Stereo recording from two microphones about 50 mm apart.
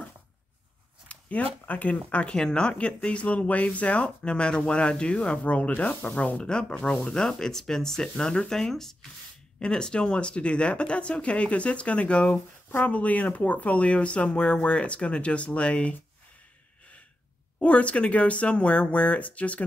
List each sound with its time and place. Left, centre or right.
1.0 s a sound: left
2.2 s speech: centre
2.7 s speech: left
12.6 s speech: left
17.6 s speech: left